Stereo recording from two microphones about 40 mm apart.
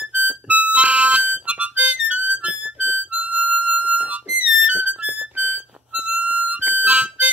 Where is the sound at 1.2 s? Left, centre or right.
Right.